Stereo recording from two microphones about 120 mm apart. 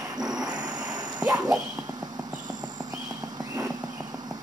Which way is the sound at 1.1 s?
10° right (ahead or behind).